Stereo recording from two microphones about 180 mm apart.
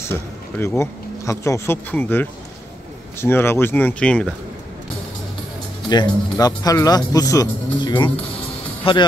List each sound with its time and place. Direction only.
0.0 s speech: 15° left (ahead or behind)
5.9 s speech: 20° left (ahead or behind)